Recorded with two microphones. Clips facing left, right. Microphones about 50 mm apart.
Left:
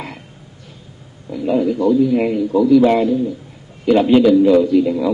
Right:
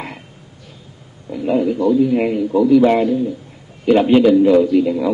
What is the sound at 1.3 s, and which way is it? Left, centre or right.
A man's voice, centre.